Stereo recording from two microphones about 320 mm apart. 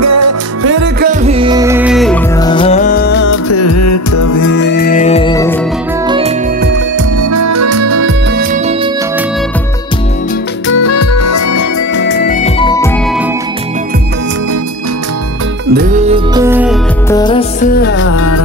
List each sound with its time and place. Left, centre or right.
0.0 s music: right
0.7 s music: right
1.2 s music: centre
2.3 s music: centre; by 4.6 s left
4.6 s music: left; by 5.6 s centre
6.0 s music: centre
7.2 s music: right
10.7 s music: left
11.9 s music: left; by 12.9 s centre
15.7 s music: right
16.4 s music: centre
17.1 s music: centre
17.7 s music: left